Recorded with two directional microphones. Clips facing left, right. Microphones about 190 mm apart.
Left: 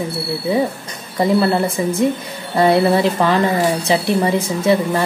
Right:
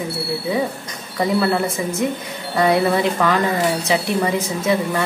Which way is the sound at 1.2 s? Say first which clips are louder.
Left 3 dB; 35° left (ahead or behind).